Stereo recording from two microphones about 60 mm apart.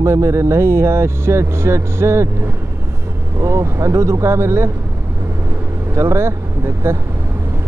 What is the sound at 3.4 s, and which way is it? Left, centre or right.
Speech, right.